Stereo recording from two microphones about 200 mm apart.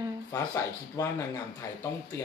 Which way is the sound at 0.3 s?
15° left (ahead or behind).